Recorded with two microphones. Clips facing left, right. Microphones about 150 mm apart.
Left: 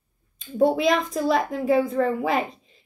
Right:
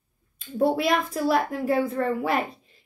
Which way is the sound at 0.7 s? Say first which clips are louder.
Left 2 dB; 5° right (ahead or behind).